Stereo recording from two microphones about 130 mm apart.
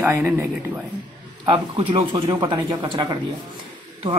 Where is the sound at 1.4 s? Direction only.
40° right (ahead or behind).